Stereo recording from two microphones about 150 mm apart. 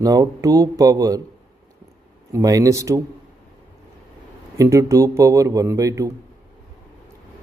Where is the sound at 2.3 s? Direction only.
20° right (ahead or behind).